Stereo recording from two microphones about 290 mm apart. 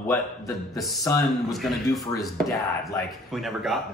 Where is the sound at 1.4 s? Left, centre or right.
Centre.